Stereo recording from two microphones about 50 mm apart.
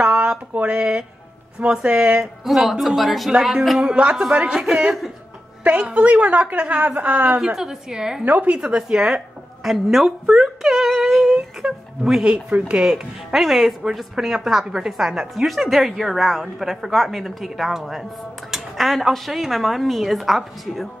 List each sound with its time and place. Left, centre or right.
0.0 s a sound: right
1.6 s a woman's voice: right
2.4 s a woman's voice: centre
3.8 s a woman's voice: centre
5.6 s a woman's voice: right
7.5 s a woman's voice: centre
8.3 s a woman's voice: right
8.5 s a woman's voice: centre
10.2 s a woman's voice: centre
10.6 s a sound: centre
11.3 s speech: centre
12.8 s a woman's voice: centre